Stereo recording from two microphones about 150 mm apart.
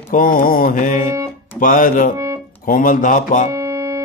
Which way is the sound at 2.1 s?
20° right (ahead or behind).